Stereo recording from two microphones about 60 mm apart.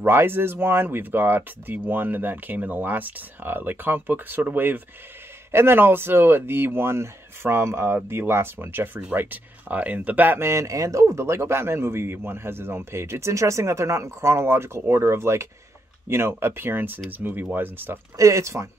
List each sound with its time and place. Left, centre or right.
0.0 s speech: right
10.4 s speech: right
18.1 s speech: right